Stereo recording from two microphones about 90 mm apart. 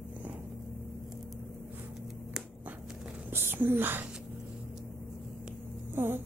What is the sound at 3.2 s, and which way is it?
Whispering, 25° right (ahead or behind).